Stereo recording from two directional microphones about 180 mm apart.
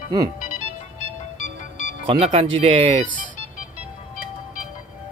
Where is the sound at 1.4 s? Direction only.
45° left (ahead or behind).